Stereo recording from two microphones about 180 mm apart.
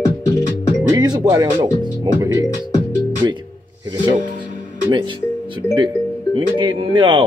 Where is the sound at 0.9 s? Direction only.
20° right (ahead or behind).